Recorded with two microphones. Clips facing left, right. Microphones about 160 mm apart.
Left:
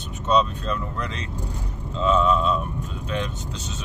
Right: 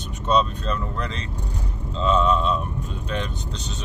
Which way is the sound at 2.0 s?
5° left (ahead or behind).